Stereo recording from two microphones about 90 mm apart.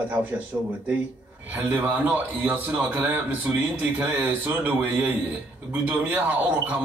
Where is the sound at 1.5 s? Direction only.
20° right (ahead or behind).